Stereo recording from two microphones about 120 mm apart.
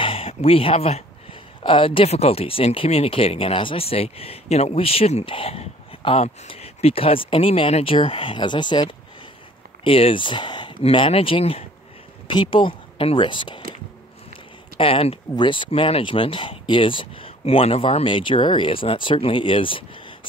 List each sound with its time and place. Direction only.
0.0 s speech: 50° left (ahead or behind)
12.3 s speech: 45° left (ahead or behind)
14.8 s speech: 50° left (ahead or behind)
18.0 s speech: 45° left (ahead or behind)